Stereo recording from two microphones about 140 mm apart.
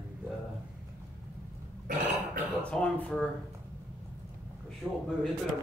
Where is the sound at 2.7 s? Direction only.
10° left (ahead or behind).